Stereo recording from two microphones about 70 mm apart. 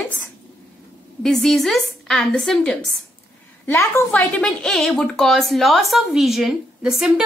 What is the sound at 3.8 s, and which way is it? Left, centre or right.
Speech, left.